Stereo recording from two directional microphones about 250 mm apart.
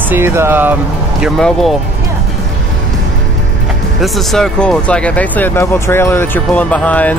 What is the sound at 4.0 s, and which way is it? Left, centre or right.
Speech, centre.